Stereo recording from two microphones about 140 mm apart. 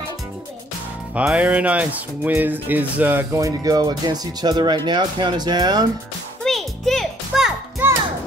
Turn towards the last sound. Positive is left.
turn(degrees=-15)  # may be behind; listen again after turning